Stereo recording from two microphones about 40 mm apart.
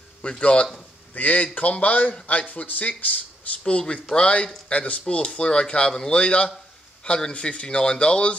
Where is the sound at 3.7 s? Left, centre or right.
Left.